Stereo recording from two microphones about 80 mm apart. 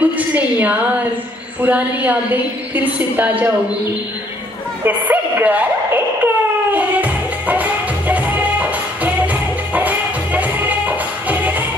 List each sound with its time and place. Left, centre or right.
0.0 s a woman's voice: centre
4.8 s a woman's voice: right
6.2 s music: centre